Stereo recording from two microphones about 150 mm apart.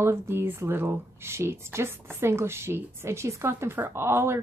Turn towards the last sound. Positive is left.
turn(degrees=-15)  # may be behind; listen again after turning